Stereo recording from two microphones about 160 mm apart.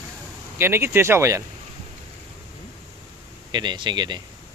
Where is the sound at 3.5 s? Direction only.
30° right (ahead or behind).